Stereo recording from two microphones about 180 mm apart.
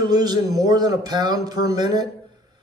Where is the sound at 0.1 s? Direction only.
20° right (ahead or behind).